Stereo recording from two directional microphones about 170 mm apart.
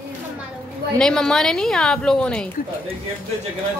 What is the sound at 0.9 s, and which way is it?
A woman's voice, 5° left (ahead or behind).